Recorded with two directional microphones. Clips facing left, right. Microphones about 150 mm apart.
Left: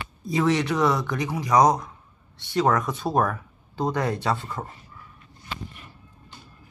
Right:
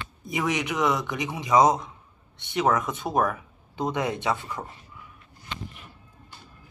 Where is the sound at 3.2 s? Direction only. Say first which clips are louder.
Even; centre (ahead or behind).